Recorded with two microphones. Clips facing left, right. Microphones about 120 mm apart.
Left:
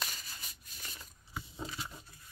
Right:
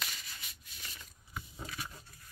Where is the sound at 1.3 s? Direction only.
25° left (ahead or behind).